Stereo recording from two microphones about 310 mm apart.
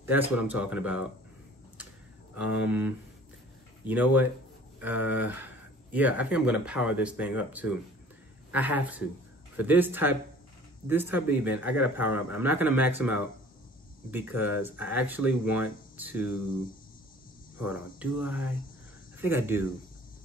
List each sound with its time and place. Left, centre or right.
0.0 s speech: centre
2.4 s speech: left
3.8 s speech: centre
17.6 s speech: centre